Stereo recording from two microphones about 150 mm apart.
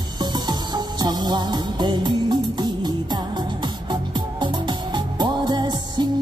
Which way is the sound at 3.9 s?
30° right (ahead or behind).